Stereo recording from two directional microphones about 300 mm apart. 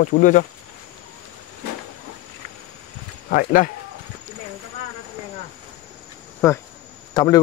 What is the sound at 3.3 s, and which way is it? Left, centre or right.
Speech, left.